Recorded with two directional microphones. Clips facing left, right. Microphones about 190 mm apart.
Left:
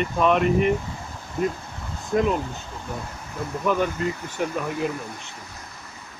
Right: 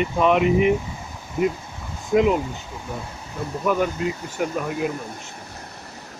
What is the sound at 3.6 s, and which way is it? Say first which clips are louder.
Speech: right 1 dB; 5° right (ahead or behind).